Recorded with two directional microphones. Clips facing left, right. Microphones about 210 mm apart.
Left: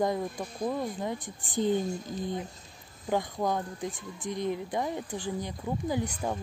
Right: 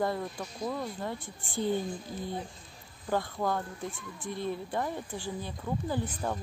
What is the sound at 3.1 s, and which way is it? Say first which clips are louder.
Speech: left 2 dB; 15° left (ahead or behind).